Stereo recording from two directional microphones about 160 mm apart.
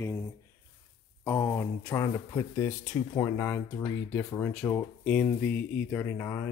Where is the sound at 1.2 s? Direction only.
15° left (ahead or behind).